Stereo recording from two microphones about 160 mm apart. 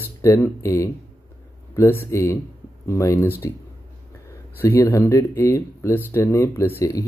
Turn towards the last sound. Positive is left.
turn(degrees=15)  # may be behind; listen again after turning